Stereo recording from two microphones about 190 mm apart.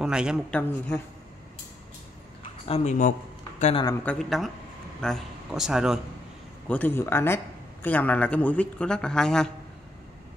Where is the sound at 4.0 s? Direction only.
5° left (ahead or behind).